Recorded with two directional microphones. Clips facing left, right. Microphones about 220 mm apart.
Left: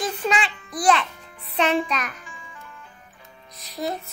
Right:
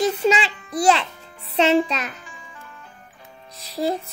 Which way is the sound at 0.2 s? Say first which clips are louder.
Right 5 dB; 25° right (ahead or behind).